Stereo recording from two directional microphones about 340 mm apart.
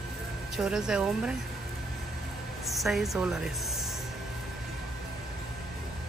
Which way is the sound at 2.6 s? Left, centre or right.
Centre.